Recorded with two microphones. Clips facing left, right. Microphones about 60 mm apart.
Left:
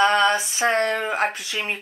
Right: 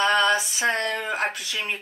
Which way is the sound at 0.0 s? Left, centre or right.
Left.